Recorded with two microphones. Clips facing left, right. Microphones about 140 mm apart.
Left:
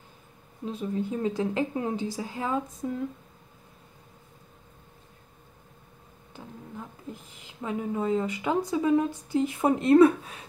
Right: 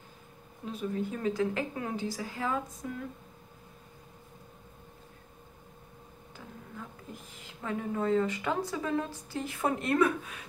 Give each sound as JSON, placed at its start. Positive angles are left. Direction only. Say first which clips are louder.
{"t": 0.7, "sound": "a woman's voice", "louder": "left 3 dB", "side_deg": 25}
{"t": 7.6, "sound": "speech", "louder": "left 3 dB", "side_deg": 15}